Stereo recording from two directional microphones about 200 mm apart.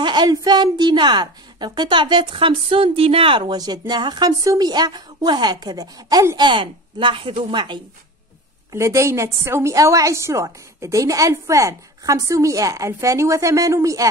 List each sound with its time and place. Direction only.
0.0 s a woman's voice: 20° right (ahead or behind)